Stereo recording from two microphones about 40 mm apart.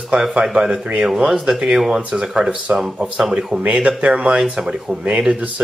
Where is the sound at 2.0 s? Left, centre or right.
Right.